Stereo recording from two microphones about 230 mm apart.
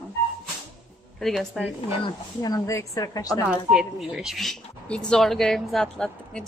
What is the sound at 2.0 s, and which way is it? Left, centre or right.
Speech, centre.